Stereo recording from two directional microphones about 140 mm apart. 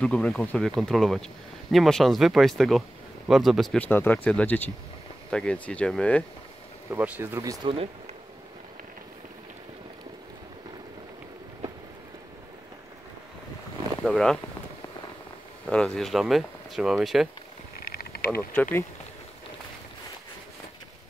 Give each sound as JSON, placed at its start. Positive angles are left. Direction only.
{"t": 0.0, "sound": "speech", "side_deg": 5}
{"t": 6.9, "sound": "speech", "side_deg": -15}
{"t": 7.6, "sound": "speech", "side_deg": -45}
{"t": 14.0, "sound": "speech", "side_deg": 5}
{"t": 15.7, "sound": "speech", "side_deg": 5}
{"t": 18.3, "sound": "speech", "side_deg": 10}